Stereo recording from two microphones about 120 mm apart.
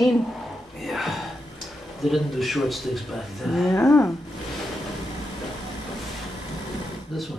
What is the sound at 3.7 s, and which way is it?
Speech, 20° left (ahead or behind).